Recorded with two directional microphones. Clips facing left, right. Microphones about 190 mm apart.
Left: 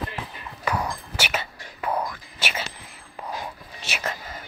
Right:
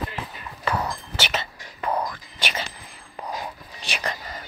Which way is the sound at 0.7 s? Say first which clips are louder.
Right 1 dB; 10° left (ahead or behind).